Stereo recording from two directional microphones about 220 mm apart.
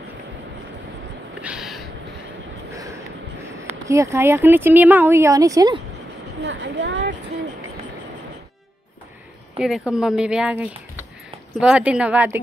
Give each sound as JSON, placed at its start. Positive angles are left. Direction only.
{"t": 1.4, "sound": "a sound", "side_deg": 0}
{"t": 2.7, "sound": "speech", "side_deg": -15}
{"t": 6.4, "sound": "speech", "side_deg": -55}
{"t": 9.6, "sound": "speech", "side_deg": -5}